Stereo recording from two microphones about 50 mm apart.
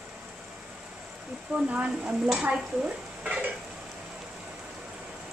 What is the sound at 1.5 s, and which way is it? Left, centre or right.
Speech, right.